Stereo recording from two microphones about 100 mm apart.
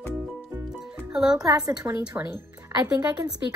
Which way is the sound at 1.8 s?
20° right (ahead or behind).